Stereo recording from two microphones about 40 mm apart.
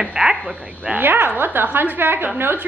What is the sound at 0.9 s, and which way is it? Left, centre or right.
A woman's voice, right.